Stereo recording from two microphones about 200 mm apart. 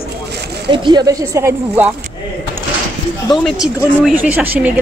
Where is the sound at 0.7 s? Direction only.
25° right (ahead or behind).